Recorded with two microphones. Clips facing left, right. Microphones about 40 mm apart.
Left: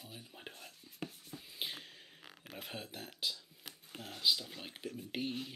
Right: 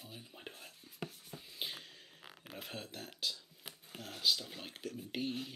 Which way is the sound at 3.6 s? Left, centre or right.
Centre.